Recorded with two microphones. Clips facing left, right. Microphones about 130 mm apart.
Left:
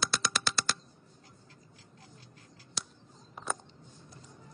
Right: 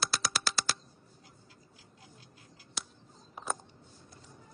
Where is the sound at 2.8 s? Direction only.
Centre (ahead or behind).